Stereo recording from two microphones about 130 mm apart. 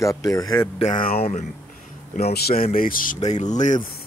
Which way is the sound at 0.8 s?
80° left.